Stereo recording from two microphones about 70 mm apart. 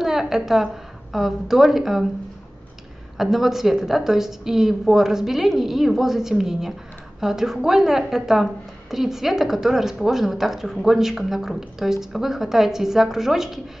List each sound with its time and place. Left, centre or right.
0.0 s a woman's voice: centre
3.2 s a woman's voice: centre